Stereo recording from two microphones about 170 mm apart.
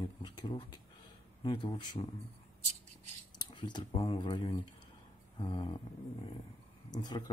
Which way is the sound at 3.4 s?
25° left (ahead or behind).